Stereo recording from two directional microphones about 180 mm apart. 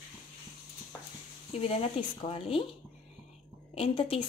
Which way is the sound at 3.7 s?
30° left (ahead or behind).